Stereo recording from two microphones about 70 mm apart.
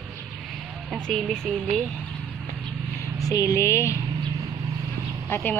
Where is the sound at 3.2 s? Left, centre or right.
Left.